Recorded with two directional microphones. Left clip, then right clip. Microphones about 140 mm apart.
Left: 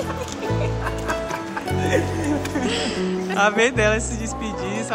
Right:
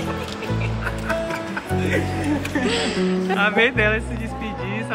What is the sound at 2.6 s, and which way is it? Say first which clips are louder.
Speech: right 2 dB; 15° left (ahead or behind).